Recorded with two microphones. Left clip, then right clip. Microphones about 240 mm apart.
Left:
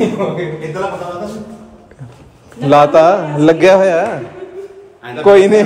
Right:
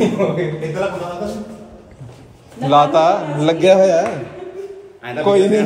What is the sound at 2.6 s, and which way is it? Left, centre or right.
Speech, left.